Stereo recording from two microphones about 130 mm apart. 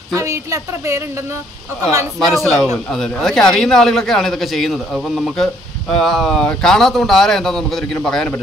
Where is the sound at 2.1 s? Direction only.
Centre (ahead or behind).